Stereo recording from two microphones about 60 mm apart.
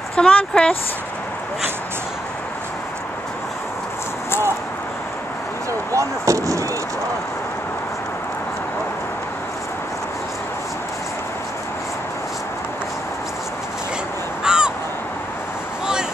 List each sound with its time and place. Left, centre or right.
0.1 s speech: centre
5.7 s speech: right
14.4 s crow: centre